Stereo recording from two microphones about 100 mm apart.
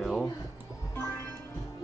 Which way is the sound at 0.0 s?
5° left (ahead or behind).